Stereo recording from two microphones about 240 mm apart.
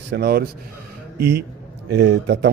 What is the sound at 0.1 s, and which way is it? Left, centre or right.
Speech, right.